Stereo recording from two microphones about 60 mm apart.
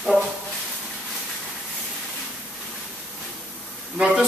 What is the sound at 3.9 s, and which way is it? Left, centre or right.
Speech, centre.